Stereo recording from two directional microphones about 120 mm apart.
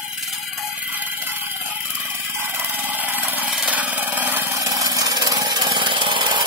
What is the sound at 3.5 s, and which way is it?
Engine, 10° right (ahead or behind).